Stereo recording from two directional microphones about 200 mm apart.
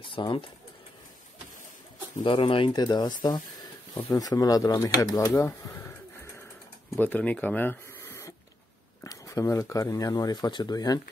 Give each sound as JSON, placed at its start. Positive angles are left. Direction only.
{"t": 0.0, "sound": "speech", "side_deg": 25}
{"t": 2.2, "sound": "speech", "side_deg": 25}
{"t": 7.0, "sound": "speech", "side_deg": 10}